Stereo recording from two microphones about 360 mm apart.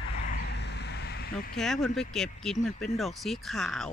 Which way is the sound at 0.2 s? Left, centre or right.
Left.